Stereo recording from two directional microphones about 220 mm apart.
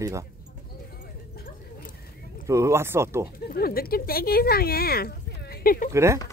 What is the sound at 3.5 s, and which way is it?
Speech, 40° left (ahead or behind).